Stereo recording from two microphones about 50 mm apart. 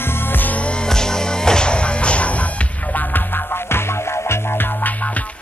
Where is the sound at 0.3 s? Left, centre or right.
Left.